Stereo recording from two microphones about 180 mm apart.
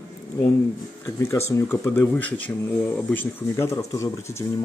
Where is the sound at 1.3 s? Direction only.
15° left (ahead or behind).